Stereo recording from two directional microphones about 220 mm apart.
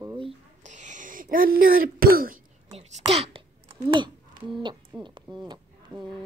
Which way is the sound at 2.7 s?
30° right (ahead or behind).